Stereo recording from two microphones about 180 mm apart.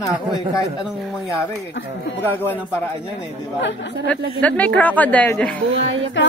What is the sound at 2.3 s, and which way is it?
Speech, 10° left (ahead or behind).